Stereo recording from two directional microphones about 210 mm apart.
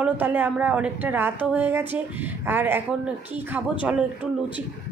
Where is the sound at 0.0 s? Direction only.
10° right (ahead or behind).